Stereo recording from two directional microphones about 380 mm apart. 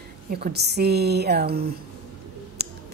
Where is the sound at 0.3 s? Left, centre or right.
Right.